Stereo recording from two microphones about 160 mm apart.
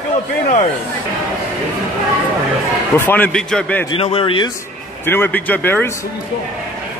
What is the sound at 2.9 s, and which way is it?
Speech, 10° left (ahead or behind).